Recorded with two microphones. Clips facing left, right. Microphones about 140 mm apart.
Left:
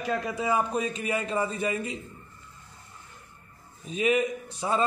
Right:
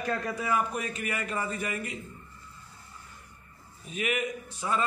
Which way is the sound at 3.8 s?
30° left (ahead or behind).